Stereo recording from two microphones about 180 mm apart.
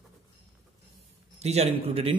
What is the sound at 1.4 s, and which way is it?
Speech, 35° right (ahead or behind).